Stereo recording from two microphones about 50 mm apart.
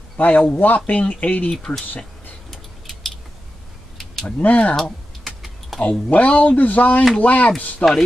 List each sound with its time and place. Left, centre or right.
0.4 s speech: left
4.0 s a sound: centre
4.4 s speech: left
4.7 s typing: centre
5.8 s speech: left